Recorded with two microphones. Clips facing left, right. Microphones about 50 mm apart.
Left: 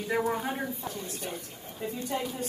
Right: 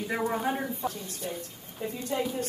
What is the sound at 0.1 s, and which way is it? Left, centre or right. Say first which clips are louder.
Speech: even; centre.